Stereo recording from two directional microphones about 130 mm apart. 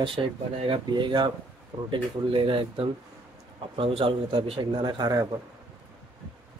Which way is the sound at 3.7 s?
45° right (ahead or behind).